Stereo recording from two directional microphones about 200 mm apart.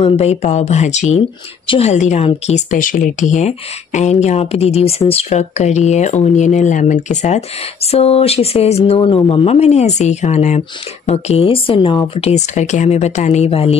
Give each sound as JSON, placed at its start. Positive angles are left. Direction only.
{"t": 0.0, "sound": "speech", "side_deg": 30}